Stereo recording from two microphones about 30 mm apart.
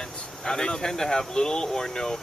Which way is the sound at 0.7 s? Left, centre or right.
Left.